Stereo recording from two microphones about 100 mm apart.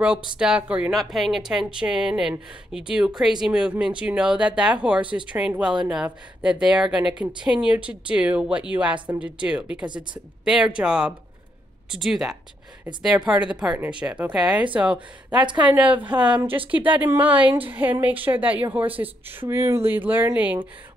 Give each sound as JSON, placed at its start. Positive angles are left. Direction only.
{"t": 0.4, "sound": "speech", "side_deg": -10}
{"t": 0.9, "sound": "a woman's voice", "side_deg": 0}